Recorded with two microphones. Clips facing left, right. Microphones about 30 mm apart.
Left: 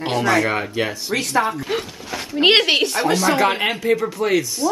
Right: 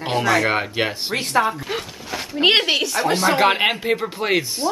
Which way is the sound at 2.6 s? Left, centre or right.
Centre.